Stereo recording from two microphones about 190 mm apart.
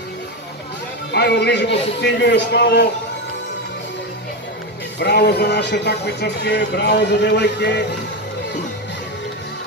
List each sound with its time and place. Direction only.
1.1 s speech: 60° left (ahead or behind)
4.9 s speech: 60° left (ahead or behind)